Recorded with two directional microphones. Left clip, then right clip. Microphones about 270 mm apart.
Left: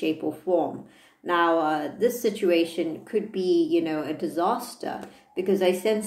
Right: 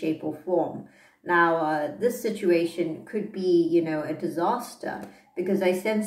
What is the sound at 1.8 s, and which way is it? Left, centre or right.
Speech, left.